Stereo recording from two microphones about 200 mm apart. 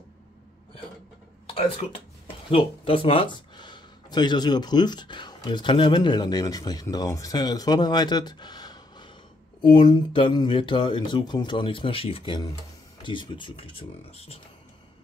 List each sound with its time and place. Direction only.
1.5 s speech: 30° left (ahead or behind)